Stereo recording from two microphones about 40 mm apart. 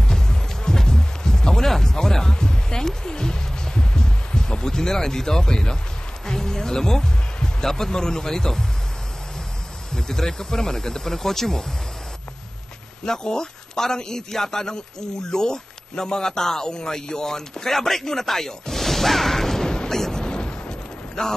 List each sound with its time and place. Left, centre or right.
0.0 s music: centre
6.2 s speech: centre
9.9 s speech: centre
13.0 s a man's voice: centre